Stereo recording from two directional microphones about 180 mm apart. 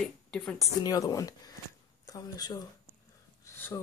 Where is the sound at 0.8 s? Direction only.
20° left (ahead or behind).